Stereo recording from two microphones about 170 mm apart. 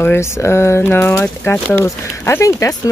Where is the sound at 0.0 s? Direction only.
15° left (ahead or behind).